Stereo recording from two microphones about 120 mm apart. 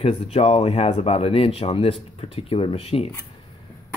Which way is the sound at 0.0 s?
55° left (ahead or behind).